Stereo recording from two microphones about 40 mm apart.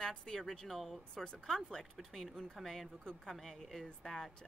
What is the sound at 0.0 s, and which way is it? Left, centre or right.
Speech, centre.